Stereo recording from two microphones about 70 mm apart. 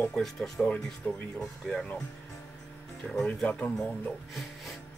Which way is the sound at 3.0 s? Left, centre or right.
Centre.